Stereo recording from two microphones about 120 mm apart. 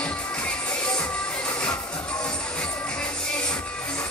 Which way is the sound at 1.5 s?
10° left (ahead or behind).